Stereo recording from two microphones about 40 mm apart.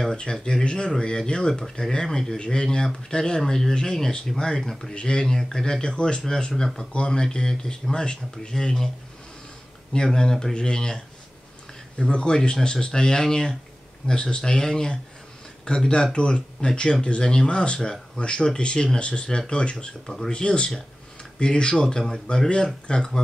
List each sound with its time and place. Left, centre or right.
0.1 s speech: centre
6.9 s speech: left
9.9 s speech: centre
12.0 s speech: left